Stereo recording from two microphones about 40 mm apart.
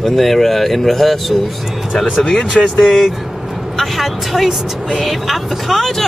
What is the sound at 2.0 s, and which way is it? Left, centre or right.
Speech, left.